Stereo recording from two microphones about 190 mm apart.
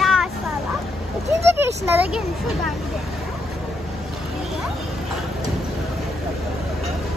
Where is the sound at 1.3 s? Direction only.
10° right (ahead or behind).